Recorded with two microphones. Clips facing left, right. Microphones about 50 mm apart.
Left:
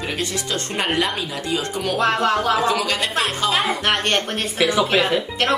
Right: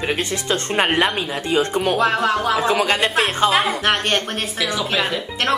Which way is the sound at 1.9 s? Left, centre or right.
Centre.